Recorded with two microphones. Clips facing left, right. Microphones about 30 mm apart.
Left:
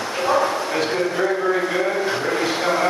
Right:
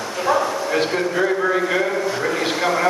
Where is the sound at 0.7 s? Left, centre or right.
Centre.